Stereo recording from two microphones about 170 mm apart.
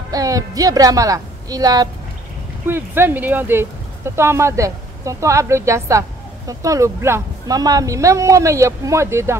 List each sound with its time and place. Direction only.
0.1 s a woman's voice: 20° right (ahead or behind)